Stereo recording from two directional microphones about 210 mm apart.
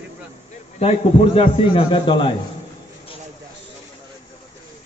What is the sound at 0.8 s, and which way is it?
A man's voice, 30° left (ahead or behind).